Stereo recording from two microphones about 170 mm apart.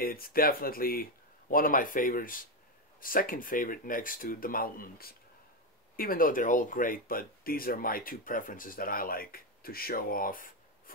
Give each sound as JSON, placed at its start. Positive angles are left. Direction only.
{"t": 0.0, "sound": "speech", "side_deg": 60}